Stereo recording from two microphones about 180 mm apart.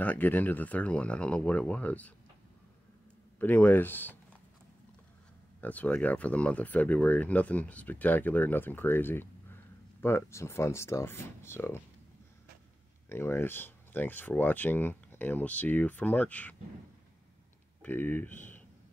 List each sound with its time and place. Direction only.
0.0 s speech: 10° left (ahead or behind)
3.3 s speech: 10° left (ahead or behind)
5.6 s speech: 10° left (ahead or behind)
13.1 s speech: 15° left (ahead or behind)
17.8 s speech: 10° left (ahead or behind)